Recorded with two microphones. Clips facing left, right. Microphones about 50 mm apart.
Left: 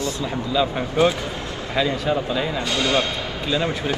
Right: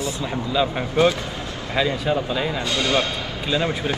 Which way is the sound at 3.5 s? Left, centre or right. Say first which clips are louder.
Even; right.